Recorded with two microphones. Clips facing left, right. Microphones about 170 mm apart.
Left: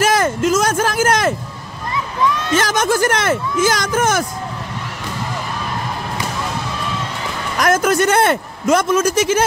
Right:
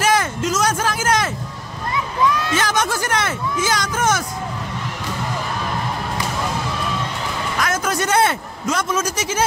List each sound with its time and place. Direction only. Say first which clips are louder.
0.0 s a sound: left 4 dB; 50° left (ahead or behind)
2.5 s speech: left 4 dB; 45° left (ahead or behind)
7.6 s a man's voice: left 9 dB; 50° left (ahead or behind)